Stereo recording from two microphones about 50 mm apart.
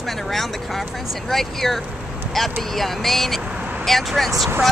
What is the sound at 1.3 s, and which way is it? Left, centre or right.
Speech, centre.